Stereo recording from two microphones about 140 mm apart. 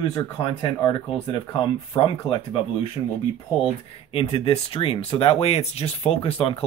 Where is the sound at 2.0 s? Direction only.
40° left (ahead or behind).